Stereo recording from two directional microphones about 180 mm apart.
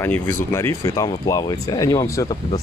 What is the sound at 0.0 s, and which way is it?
Speech, 10° left (ahead or behind).